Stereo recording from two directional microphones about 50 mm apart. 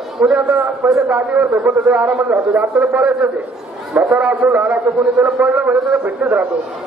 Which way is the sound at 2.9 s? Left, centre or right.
Centre.